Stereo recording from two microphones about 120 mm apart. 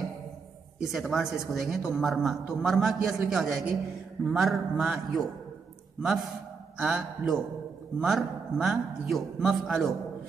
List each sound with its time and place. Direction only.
0.7 s a man's voice: centre (ahead or behind)
6.8 s a man's voice: centre (ahead or behind)